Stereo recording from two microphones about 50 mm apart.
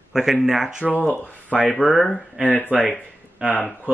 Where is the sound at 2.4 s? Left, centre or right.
Left.